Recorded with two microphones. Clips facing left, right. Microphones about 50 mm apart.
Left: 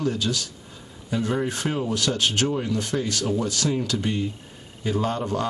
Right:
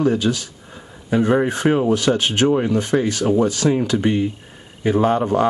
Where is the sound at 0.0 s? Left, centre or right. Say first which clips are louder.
Right 7 dB; right.